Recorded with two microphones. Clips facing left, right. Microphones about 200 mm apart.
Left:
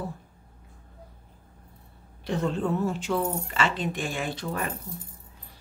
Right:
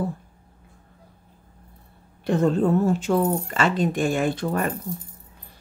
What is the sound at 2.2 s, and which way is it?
A woman's voice, 45° right (ahead or behind).